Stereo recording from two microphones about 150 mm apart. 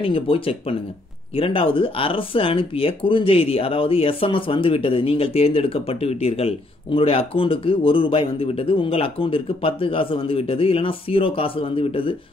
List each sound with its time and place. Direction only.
0.0 s speech: 40° left (ahead or behind)